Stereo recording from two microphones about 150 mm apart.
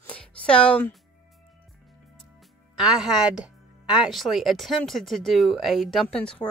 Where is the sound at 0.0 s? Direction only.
10° left (ahead or behind).